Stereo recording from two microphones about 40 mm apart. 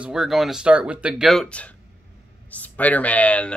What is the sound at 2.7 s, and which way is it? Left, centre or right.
Speech, left.